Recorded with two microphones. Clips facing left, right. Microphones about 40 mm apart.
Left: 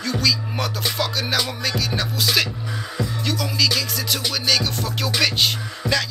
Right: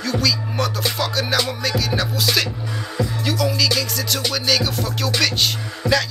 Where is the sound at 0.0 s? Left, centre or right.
Centre.